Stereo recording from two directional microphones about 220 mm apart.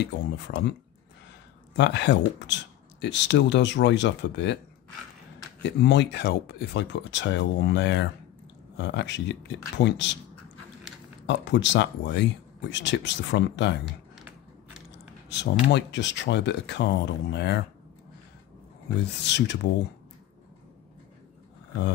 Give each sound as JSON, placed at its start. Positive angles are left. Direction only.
{"t": 0.0, "sound": "speech", "side_deg": 50}
{"t": 1.8, "sound": "speech", "side_deg": 50}
{"t": 5.6, "sound": "speech", "side_deg": 50}
{"t": 11.2, "sound": "speech", "side_deg": 55}
{"t": 15.7, "sound": "speech", "side_deg": 55}
{"t": 18.9, "sound": "speech", "side_deg": 50}